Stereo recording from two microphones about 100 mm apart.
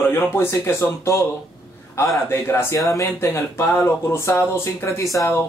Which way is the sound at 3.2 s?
25° left (ahead or behind).